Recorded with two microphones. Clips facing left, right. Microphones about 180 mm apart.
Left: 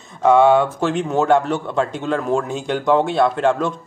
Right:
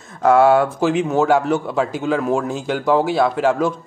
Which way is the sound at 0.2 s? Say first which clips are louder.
Even; 5° right (ahead or behind).